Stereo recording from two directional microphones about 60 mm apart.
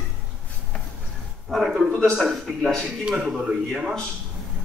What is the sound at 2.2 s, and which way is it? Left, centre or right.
A man's voice, centre.